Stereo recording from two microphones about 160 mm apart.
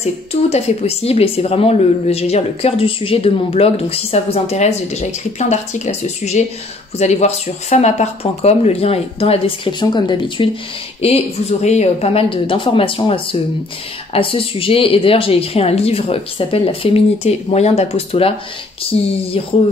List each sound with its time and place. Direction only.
0.0 s speech: 40° left (ahead or behind)